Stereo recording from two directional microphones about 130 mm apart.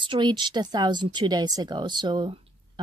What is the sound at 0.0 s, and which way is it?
A woman's voice, 35° right (ahead or behind).